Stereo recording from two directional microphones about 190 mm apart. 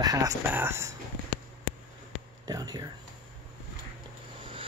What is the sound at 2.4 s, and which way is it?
Speech, 20° right (ahead or behind).